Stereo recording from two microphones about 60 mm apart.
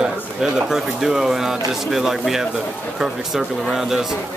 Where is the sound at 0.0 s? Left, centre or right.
Centre.